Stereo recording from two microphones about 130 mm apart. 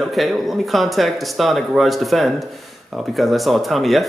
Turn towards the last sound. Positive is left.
turn(degrees=0)  # may be behind; listen again after turning